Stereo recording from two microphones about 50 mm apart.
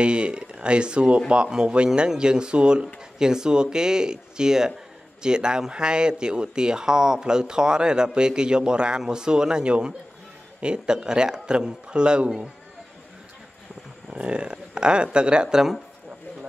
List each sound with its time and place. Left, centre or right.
0.0 s a man's voice: right
14.1 s speech: right